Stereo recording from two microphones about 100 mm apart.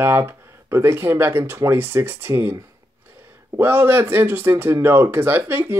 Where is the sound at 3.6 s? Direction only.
20° right (ahead or behind).